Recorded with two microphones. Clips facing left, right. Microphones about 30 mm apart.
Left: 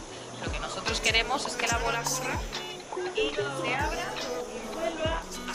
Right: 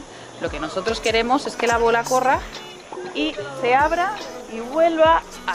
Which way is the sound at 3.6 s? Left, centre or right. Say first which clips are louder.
Right 17 dB; right.